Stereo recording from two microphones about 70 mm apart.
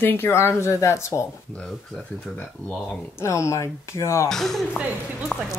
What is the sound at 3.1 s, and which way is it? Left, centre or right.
Speech, left.